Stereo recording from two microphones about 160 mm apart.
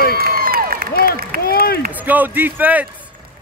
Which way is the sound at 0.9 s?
70° left (ahead or behind).